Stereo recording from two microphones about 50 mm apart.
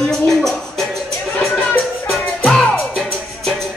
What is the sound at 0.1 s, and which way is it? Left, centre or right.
Music, centre.